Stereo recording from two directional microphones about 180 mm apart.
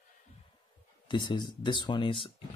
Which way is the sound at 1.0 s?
25° left (ahead or behind).